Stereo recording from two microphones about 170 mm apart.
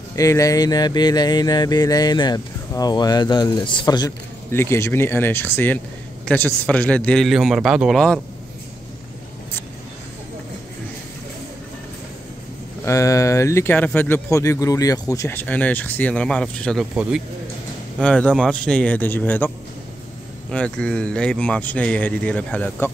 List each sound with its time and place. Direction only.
0.1 s a man's voice: 20° left (ahead or behind); by 8.2 s 5° left (ahead or behind)
12.8 s speech: 20° left (ahead or behind)
16.9 s speech: 5° right (ahead or behind)
17.9 s speech: 5° left (ahead or behind)